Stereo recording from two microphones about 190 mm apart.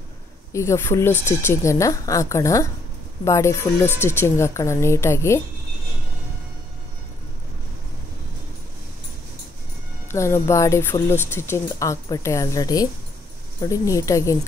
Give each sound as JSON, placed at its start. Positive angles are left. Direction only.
{"t": 0.5, "sound": "speech", "side_deg": 15}
{"t": 10.1, "sound": "speech", "side_deg": 15}